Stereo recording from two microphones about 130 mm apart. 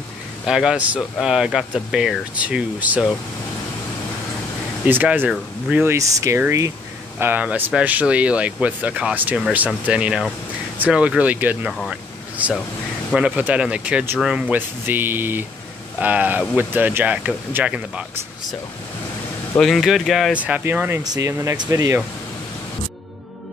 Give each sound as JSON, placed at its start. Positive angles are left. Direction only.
{"t": 0.5, "sound": "speech", "side_deg": -5}
{"t": 4.8, "sound": "speech", "side_deg": -15}
{"t": 19.6, "sound": "speech", "side_deg": 0}
{"t": 20.3, "sound": "speech", "side_deg": -10}
{"t": 21.0, "sound": "speech", "side_deg": -30}